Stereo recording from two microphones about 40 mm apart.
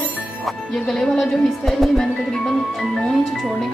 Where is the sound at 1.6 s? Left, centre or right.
Centre.